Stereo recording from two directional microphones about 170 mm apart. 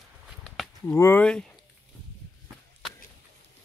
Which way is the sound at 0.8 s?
15° left (ahead or behind).